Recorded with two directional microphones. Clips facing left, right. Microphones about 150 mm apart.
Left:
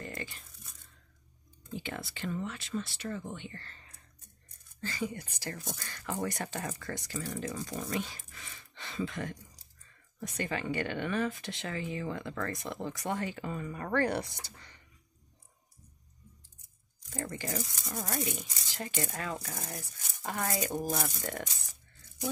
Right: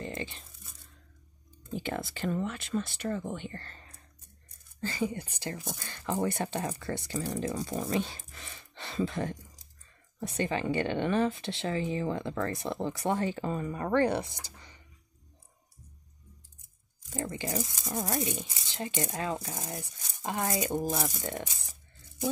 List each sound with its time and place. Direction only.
0.0 s tearing: 25° right (ahead or behind)
1.7 s speech: 45° right (ahead or behind)
4.7 s speech: 30° right (ahead or behind)
17.1 s speech: 15° right (ahead or behind)
21.2 s speech: 25° right (ahead or behind)